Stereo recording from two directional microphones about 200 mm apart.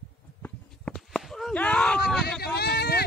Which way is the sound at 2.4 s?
55° left (ahead or behind).